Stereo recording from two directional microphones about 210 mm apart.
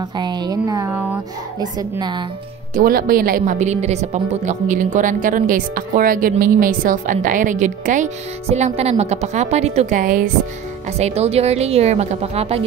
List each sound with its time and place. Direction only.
0.1 s a woman's voice: 20° right (ahead or behind)
2.7 s speech: 45° right (ahead or behind); by 12.6 s 30° right (ahead or behind)